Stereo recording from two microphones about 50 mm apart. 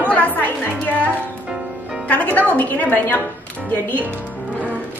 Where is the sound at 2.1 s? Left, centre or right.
Left.